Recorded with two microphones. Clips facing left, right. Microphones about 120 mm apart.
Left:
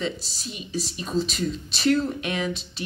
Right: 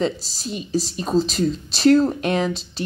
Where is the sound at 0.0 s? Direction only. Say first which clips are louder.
Right 7 dB; 40° right (ahead or behind).